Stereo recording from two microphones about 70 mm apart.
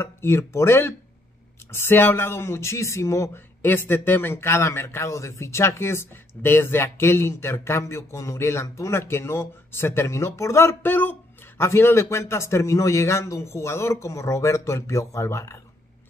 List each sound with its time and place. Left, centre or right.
0.0 s a man's voice: left
3.6 s a man's voice: left